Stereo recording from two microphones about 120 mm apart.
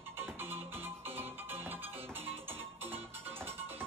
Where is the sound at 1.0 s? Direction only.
20° right (ahead or behind).